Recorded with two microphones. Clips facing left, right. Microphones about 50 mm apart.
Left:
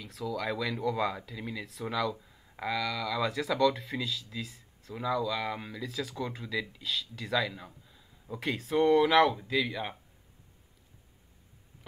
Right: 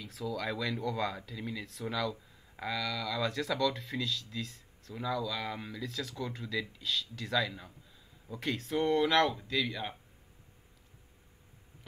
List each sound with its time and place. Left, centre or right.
0.0 s speech: centre